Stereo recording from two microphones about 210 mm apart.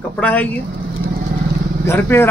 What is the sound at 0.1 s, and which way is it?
Speech, 5° left (ahead or behind).